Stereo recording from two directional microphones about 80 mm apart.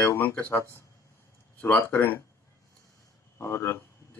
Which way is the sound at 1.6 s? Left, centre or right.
Left.